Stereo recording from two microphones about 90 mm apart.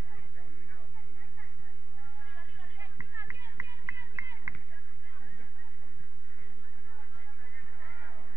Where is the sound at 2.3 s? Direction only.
20° right (ahead or behind).